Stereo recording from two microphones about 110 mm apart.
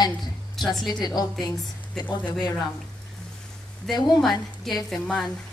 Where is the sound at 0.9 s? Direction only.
40° left (ahead or behind).